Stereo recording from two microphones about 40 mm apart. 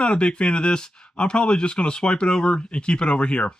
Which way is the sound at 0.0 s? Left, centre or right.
Left.